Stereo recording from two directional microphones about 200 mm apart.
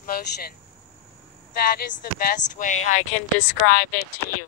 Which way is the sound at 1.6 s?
50° left (ahead or behind).